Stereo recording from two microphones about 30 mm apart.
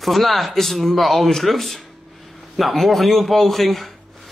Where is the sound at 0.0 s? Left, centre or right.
Centre.